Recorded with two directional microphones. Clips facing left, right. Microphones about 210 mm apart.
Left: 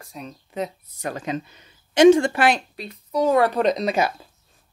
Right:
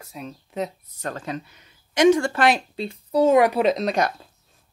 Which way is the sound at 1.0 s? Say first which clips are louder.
Left 2 dB; 15° left (ahead or behind).